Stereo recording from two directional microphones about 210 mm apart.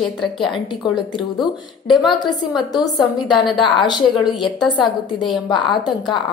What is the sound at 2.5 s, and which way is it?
Speech, 20° left (ahead or behind).